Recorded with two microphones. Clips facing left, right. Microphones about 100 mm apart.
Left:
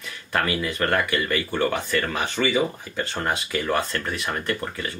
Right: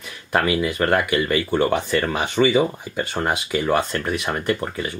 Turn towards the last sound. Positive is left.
turn(degrees=-20)  # may be behind; listen again after turning